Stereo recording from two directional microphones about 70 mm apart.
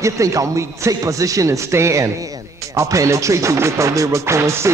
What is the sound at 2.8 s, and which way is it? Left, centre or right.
Speech, right.